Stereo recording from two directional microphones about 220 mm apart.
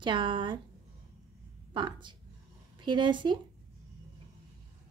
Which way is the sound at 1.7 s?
20° right (ahead or behind).